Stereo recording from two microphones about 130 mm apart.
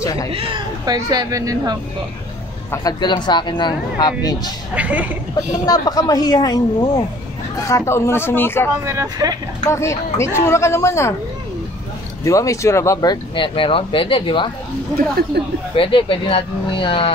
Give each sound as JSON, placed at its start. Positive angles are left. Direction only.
{"t": 0.0, "sound": "a man's voice", "side_deg": 25}
{"t": 0.3, "sound": "speech", "side_deg": -45}
{"t": 2.8, "sound": "speech", "side_deg": 35}
{"t": 4.7, "sound": "speech", "side_deg": -10}
{"t": 5.7, "sound": "speech", "side_deg": 30}
{"t": 8.8, "sound": "speech", "side_deg": -25}
{"t": 9.7, "sound": "speech", "side_deg": 20}
{"t": 12.3, "sound": "speech", "side_deg": 25}
{"t": 15.7, "sound": "speech", "side_deg": 45}